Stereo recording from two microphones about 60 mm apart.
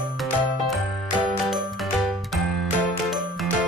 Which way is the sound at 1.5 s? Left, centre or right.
Centre.